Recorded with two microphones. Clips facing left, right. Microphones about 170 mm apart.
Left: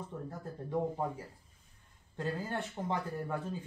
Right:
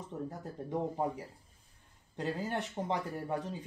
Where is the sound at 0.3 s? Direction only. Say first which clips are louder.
Even; 20° right (ahead or behind).